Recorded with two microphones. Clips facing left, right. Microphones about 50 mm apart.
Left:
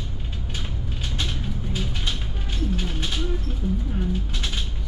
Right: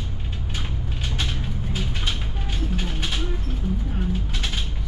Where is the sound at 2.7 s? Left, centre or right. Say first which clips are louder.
Right 2 dB; centre.